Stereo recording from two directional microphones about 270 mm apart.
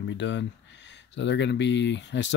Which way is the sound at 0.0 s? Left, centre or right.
Left.